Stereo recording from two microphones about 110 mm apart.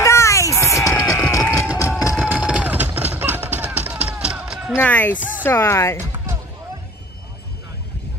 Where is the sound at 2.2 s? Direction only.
10° right (ahead or behind).